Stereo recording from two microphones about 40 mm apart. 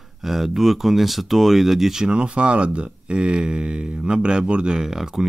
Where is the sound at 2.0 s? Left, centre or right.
Right.